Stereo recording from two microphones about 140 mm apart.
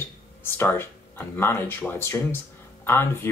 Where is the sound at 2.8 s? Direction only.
15° left (ahead or behind).